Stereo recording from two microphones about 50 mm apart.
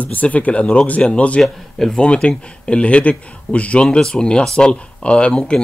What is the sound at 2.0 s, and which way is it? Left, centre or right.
Speech, left.